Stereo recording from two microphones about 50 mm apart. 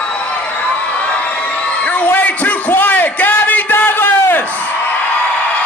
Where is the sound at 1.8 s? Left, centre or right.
Left.